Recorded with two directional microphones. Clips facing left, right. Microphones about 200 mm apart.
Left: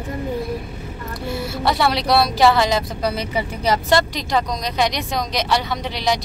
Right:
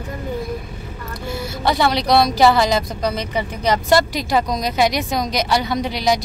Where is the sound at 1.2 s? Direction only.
Centre (ahead or behind).